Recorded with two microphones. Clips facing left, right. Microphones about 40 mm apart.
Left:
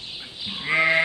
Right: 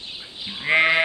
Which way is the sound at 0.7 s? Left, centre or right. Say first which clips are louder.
Right 2 dB; right.